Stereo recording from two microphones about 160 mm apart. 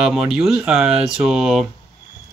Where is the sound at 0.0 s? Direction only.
5° right (ahead or behind).